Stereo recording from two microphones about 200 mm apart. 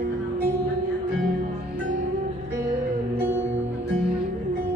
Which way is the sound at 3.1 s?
10° right (ahead or behind).